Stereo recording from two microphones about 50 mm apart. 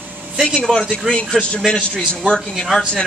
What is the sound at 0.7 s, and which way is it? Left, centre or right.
Speech, centre.